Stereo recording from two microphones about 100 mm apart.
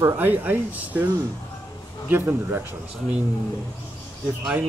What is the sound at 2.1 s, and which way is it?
Speech, 20° right (ahead or behind).